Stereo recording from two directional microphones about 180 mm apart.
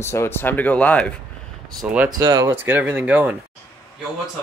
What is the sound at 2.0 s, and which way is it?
Speech, 20° right (ahead or behind).